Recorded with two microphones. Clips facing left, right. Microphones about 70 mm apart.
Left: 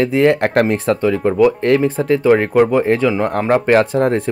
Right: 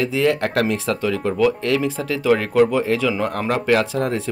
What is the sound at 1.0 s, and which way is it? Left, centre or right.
Speech, left.